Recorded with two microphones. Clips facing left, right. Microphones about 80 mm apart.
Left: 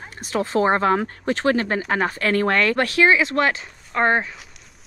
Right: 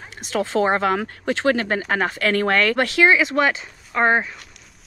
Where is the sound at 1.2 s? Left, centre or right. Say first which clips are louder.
Right 1 dB; right.